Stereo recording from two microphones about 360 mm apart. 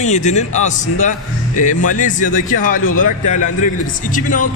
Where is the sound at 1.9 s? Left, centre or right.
Left.